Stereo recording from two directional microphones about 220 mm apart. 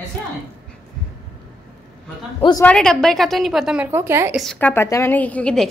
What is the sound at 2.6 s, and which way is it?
A woman's voice, 5° left (ahead or behind).